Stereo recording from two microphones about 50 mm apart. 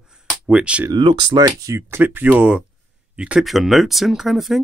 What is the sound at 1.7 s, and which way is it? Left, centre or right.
Speech, right.